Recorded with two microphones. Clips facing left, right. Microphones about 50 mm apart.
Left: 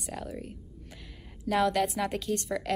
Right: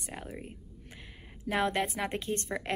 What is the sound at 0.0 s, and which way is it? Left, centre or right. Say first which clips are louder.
A woman's voice: left 4 dB; right.